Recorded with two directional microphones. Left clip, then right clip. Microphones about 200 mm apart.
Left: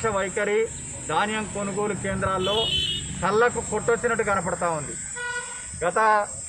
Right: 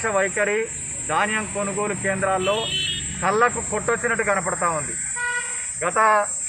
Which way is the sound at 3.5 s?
Centre (ahead or behind).